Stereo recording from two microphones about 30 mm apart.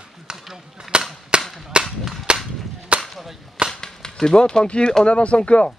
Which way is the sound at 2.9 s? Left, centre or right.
Right.